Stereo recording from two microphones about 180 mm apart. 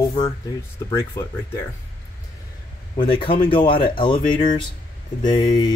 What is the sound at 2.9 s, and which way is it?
Speech, 25° left (ahead or behind).